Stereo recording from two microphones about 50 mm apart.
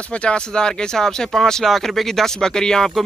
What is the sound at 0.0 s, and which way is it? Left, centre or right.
Speech, left.